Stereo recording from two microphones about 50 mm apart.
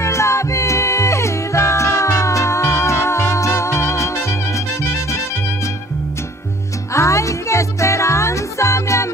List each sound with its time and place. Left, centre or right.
0.0 s music: left
6.9 s music: left